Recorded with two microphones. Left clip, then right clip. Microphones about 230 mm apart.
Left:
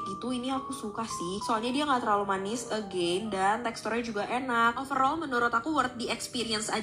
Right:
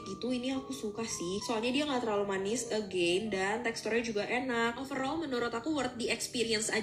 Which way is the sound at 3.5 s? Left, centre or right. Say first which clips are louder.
Left 3 dB; centre.